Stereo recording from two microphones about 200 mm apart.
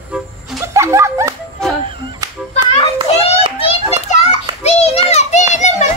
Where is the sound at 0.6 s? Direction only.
15° right (ahead or behind).